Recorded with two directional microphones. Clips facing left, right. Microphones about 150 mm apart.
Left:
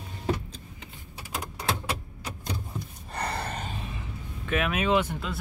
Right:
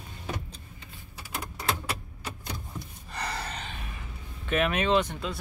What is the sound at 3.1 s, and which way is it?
Gasp, 55° left (ahead or behind).